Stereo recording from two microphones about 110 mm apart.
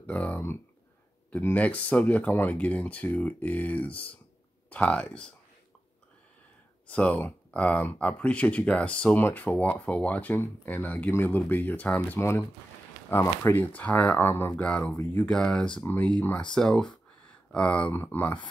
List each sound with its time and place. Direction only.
0.0 s speech: 15° left (ahead or behind)
6.9 s speech: 10° left (ahead or behind)
12.2 s speech: 25° left (ahead or behind); by 15.8 s 5° left (ahead or behind)
15.8 s speech: 20° left (ahead or behind)